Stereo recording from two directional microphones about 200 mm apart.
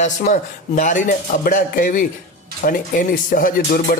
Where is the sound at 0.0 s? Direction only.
35° left (ahead or behind).